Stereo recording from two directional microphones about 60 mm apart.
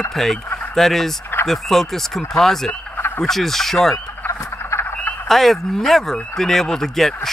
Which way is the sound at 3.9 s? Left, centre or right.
Left.